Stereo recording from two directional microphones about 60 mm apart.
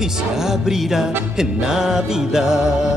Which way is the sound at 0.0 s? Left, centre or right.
Centre.